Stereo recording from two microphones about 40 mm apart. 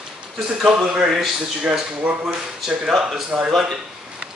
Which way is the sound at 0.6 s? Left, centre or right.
Right.